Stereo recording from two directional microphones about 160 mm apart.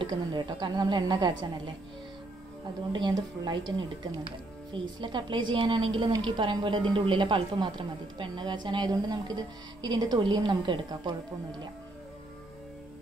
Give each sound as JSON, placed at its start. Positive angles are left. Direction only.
{"t": 0.0, "sound": "a woman's voice", "side_deg": -25}
{"t": 2.9, "sound": "a woman's voice", "side_deg": -30}